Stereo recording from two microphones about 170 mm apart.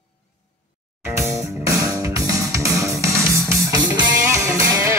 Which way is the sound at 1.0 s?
15° right (ahead or behind).